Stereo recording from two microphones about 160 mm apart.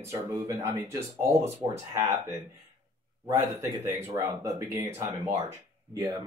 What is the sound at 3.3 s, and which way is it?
A man's voice, 15° right (ahead or behind).